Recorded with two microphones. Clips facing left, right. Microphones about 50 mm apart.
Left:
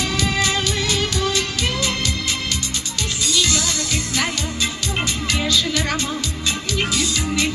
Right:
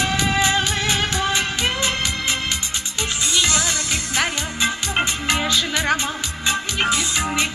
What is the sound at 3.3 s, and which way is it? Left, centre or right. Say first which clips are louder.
Music: even; right.